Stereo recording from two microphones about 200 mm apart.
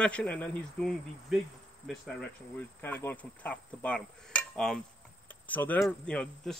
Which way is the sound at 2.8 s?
10° left (ahead or behind).